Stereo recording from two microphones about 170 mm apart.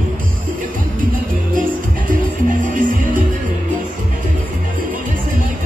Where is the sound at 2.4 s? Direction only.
50° right (ahead or behind).